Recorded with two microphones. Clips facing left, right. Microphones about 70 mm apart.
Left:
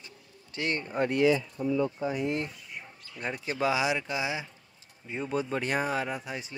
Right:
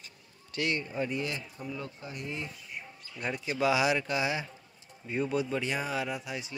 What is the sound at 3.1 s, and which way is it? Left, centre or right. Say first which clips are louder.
Speech: even; left.